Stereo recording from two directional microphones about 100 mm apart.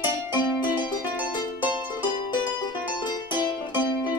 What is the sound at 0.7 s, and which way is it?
Music, 45° left (ahead or behind).